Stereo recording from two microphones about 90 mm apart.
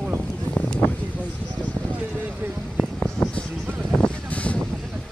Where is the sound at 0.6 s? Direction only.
20° left (ahead or behind).